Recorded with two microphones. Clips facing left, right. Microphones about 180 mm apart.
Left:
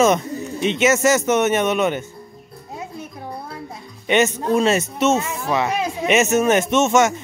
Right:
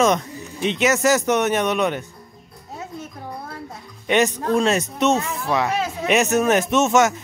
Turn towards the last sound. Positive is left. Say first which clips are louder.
# left 1 dB
turn(degrees=0)  # may be behind; listen again after turning